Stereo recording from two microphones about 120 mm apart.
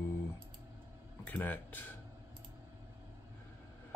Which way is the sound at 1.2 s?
15° left (ahead or behind).